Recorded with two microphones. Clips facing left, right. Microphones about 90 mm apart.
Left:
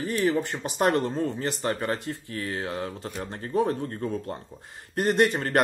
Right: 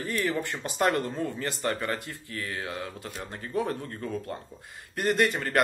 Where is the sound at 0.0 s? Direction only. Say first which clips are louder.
Left 4 dB; 20° left (ahead or behind).